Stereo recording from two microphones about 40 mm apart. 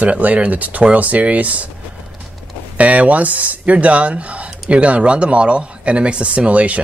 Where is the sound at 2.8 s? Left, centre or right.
Right.